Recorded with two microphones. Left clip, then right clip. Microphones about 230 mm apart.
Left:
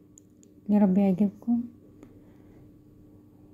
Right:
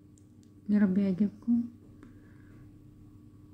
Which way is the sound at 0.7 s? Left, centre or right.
Centre.